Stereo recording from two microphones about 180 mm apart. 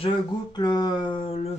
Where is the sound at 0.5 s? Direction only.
25° left (ahead or behind).